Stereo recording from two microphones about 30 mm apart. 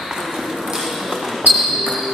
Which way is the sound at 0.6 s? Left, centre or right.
Centre.